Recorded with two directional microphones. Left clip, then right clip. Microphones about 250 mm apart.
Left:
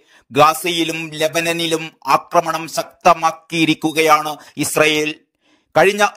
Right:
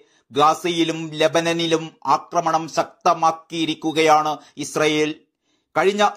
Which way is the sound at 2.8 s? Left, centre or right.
Left.